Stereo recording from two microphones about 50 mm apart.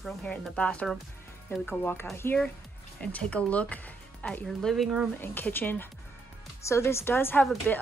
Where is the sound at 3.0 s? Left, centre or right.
Left.